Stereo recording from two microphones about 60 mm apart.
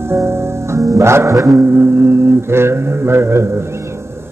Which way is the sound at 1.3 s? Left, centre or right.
Right.